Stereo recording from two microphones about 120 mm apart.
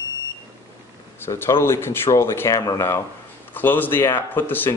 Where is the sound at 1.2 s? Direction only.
20° left (ahead or behind).